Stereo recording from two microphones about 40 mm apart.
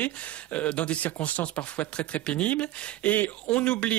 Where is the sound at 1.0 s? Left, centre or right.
Left.